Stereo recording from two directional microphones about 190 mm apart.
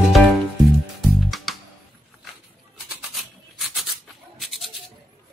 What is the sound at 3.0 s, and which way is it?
Rub, centre (ahead or behind).